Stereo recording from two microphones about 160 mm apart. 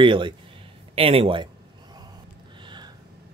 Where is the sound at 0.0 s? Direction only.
30° right (ahead or behind).